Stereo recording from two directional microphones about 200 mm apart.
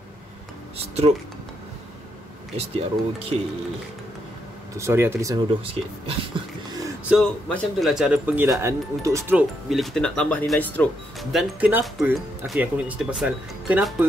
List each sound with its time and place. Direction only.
0.7 s speech: 30° right (ahead or behind)
2.5 s speech: 30° right (ahead or behind)
4.7 s speech: 15° right (ahead or behind)
5.7 s speech: 30° right (ahead or behind)
7.1 s speech: centre (ahead or behind)